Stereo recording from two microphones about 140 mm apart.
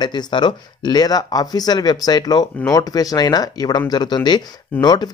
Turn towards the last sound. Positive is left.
turn(degrees=30)  # may be behind; listen again after turning